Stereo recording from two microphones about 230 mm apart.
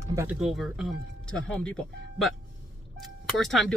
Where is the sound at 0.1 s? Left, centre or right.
Centre.